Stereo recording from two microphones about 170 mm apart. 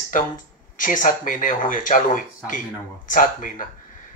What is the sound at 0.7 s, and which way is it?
Speech, 50° left (ahead or behind).